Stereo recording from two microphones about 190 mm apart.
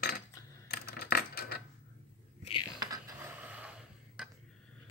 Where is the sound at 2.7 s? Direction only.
20° right (ahead or behind).